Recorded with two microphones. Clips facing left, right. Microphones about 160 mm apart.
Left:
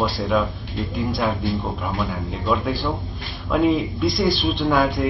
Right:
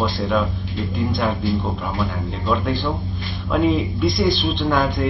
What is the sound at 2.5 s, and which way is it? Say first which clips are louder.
Speech: right 1 dB; 5° left (ahead or behind).